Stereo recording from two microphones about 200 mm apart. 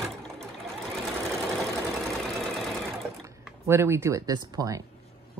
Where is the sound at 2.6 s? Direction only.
Centre (ahead or behind).